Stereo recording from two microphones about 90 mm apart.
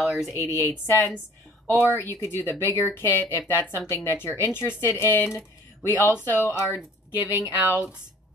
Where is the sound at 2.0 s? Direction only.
30° left (ahead or behind).